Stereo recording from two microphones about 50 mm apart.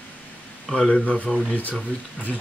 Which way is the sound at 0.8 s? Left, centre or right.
Left.